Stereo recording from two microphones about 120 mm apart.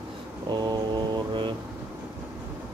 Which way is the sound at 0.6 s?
35° right (ahead or behind).